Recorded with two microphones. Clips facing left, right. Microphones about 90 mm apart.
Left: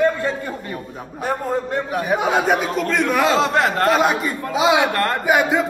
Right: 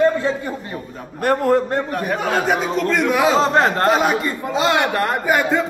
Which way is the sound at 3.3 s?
35° right (ahead or behind).